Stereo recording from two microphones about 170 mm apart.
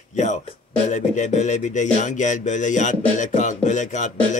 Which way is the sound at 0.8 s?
45° left (ahead or behind).